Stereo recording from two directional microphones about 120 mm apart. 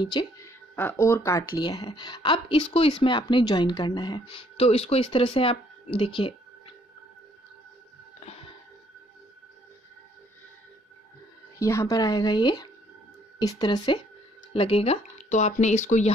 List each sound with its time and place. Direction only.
0.0 s speech: 40° left (ahead or behind)
0.4 s speech: 20° left (ahead or behind)
1.5 s speech: 40° left (ahead or behind)
4.6 s speech: 55° left (ahead or behind)
11.6 s speech: 25° left (ahead or behind)
14.5 s speech: 55° left (ahead or behind); by 16.1 s 85° left